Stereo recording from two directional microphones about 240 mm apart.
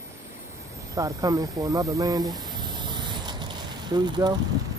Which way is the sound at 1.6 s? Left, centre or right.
Centre.